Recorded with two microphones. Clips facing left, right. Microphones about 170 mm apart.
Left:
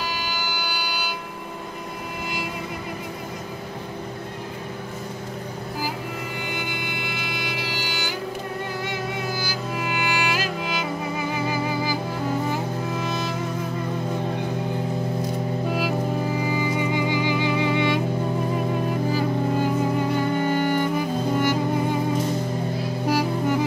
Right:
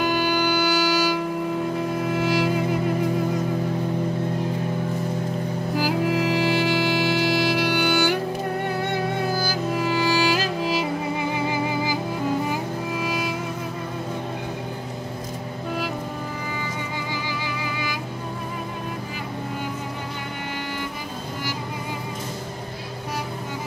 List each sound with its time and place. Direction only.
0.5 s a sound: 75° right (ahead or behind)
6.3 s music: 75° right (ahead or behind)
9.8 s music: 35° right (ahead or behind)